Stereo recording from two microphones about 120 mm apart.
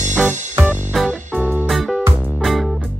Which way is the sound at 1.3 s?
15° right (ahead or behind).